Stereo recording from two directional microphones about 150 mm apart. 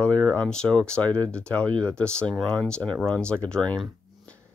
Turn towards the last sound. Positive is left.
turn(degrees=5)  # may be behind; listen again after turning